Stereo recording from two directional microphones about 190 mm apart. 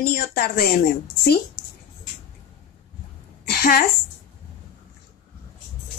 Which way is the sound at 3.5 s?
55° left (ahead or behind).